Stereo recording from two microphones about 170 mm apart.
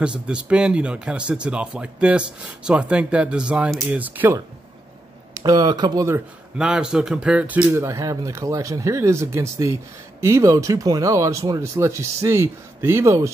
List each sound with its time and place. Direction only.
0.0 s speech: 5° right (ahead or behind)
5.3 s speech: 20° right (ahead or behind)